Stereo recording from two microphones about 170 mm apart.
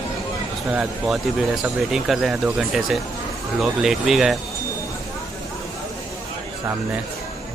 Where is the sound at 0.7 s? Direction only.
5° right (ahead or behind).